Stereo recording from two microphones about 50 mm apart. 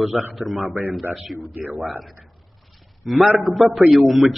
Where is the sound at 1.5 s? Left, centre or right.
Right.